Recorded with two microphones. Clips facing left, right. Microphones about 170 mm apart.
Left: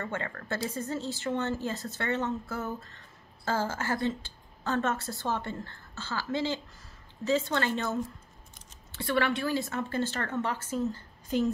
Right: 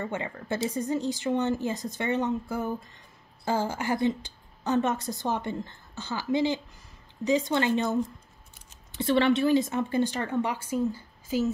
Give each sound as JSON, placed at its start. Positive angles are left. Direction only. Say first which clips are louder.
{"t": 0.0, "sound": "speech", "louder": "right 3 dB", "side_deg": -15}